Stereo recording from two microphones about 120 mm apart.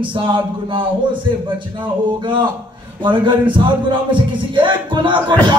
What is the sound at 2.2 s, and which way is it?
Speech, 45° right (ahead or behind).